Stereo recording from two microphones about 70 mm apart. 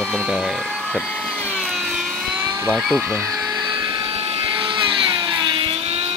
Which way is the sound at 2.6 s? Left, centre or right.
Centre.